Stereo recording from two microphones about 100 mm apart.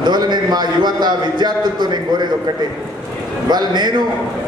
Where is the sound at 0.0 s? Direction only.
45° right (ahead or behind).